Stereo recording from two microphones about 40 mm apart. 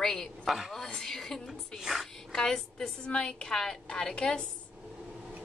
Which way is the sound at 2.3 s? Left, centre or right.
Centre.